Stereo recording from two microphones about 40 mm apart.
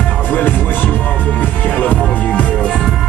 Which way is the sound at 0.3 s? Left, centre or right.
Left.